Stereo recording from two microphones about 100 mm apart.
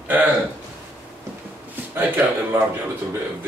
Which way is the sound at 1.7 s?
20° right (ahead or behind).